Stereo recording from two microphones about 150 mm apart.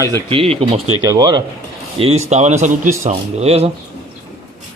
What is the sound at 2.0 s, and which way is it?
A man's voice, 45° right (ahead or behind).